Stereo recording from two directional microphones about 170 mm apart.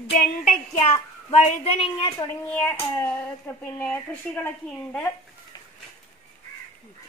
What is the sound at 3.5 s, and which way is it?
Speech, 15° left (ahead or behind).